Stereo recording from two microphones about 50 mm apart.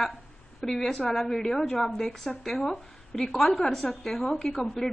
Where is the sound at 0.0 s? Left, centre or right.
Centre.